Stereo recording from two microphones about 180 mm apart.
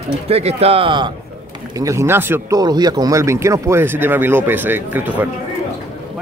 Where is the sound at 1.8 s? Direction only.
15° right (ahead or behind).